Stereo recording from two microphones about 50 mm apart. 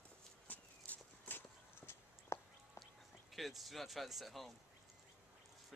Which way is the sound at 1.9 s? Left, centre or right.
Left.